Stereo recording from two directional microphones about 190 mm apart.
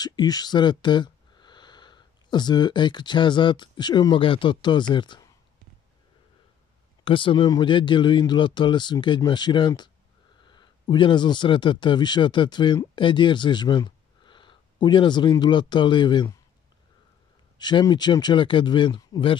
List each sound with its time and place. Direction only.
0.0 s speech: 20° left (ahead or behind)
7.1 s speech: 25° left (ahead or behind)
17.6 s speech: 20° left (ahead or behind)